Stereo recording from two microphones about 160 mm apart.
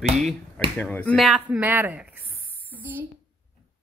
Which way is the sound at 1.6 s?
10° right (ahead or behind).